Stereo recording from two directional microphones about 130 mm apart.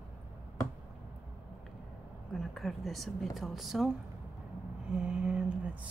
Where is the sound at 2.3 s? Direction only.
5° left (ahead or behind).